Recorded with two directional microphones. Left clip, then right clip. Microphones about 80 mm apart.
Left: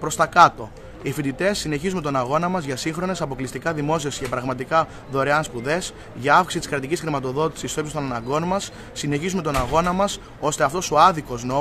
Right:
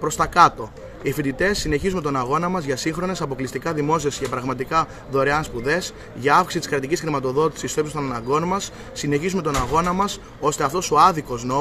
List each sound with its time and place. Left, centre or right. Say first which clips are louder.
0.0 s speech: left 1 dB; left